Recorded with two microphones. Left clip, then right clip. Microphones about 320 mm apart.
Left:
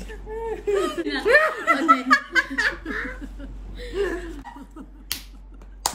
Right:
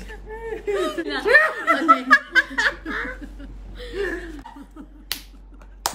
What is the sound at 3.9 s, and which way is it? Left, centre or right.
Laughter, centre.